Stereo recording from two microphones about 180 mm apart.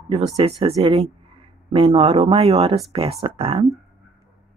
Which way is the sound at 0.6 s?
35° right (ahead or behind).